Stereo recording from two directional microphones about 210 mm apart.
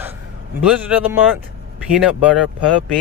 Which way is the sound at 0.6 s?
5° right (ahead or behind).